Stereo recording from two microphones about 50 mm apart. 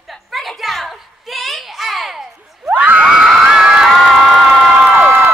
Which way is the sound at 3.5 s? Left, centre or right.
Centre.